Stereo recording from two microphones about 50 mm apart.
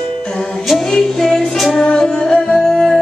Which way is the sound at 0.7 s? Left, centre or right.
Centre.